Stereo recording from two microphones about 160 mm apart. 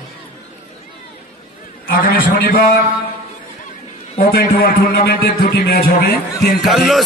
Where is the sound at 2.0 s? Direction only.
65° left (ahead or behind).